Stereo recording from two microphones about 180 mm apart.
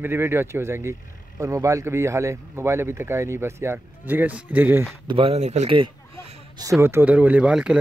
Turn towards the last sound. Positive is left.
turn(degrees=-5)  # may be behind; listen again after turning